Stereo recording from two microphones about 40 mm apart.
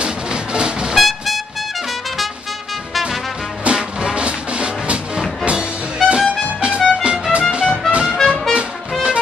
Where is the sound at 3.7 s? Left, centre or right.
Centre.